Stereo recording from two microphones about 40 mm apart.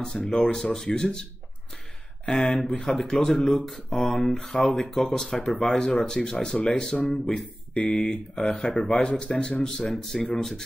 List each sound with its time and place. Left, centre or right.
0.0 s speech: left
2.2 s speech: centre; by 9.8 s left
9.8 s speech: centre